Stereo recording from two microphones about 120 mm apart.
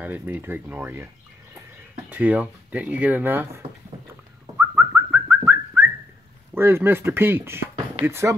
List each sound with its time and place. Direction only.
0.0 s speech: 15° right (ahead or behind)
4.6 s bird: 20° right (ahead or behind)
6.5 s speech: 20° right (ahead or behind)